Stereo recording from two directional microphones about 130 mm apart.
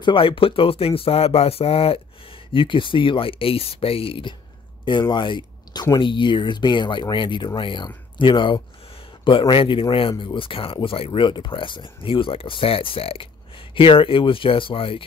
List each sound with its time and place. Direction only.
0.0 s speech: 40° left (ahead or behind)